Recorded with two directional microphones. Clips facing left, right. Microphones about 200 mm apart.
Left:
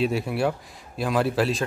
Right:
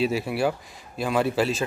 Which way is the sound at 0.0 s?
Centre (ahead or behind).